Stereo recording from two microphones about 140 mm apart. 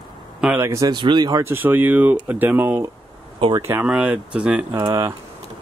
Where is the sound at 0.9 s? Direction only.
35° right (ahead or behind).